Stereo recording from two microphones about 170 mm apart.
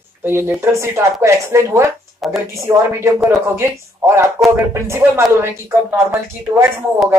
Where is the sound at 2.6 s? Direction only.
15° right (ahead or behind).